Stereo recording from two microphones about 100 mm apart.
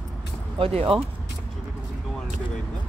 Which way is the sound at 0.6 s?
70° right (ahead or behind).